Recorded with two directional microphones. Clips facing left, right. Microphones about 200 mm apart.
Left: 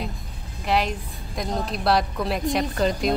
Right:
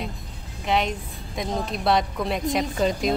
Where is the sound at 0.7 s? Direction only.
Centre (ahead or behind).